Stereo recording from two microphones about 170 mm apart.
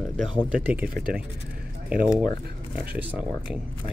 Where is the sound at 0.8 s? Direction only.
60° right (ahead or behind).